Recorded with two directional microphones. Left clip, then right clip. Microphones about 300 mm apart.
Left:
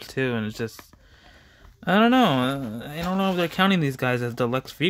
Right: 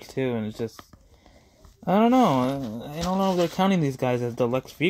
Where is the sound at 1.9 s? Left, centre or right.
Centre.